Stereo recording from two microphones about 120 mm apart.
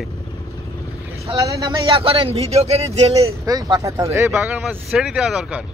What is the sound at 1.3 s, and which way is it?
Speech, 30° right (ahead or behind).